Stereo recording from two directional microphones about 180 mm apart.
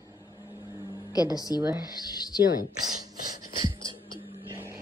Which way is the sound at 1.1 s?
20° left (ahead or behind).